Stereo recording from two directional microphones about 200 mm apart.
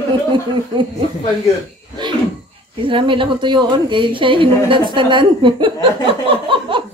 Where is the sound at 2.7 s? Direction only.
25° right (ahead or behind).